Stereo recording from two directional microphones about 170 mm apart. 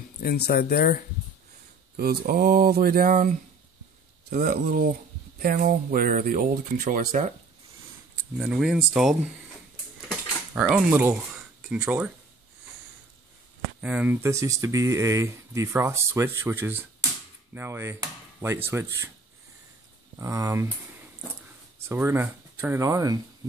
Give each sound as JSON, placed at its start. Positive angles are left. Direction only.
{"t": 0.2, "sound": "speech", "side_deg": 65}
{"t": 2.0, "sound": "speech", "side_deg": -65}
{"t": 8.4, "sound": "speech", "side_deg": -5}
{"t": 10.0, "sound": "dishes", "side_deg": -5}
{"t": 11.7, "sound": "speech", "side_deg": -10}
{"t": 13.7, "sound": "speech", "side_deg": -10}
{"t": 20.2, "sound": "speech", "side_deg": -20}